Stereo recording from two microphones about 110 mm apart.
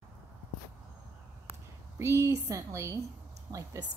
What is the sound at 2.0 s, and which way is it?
A woman's voice, 25° right (ahead or behind).